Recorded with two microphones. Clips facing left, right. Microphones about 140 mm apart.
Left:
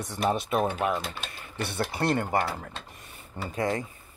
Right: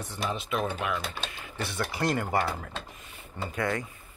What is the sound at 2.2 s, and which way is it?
Speech, 50° left (ahead or behind).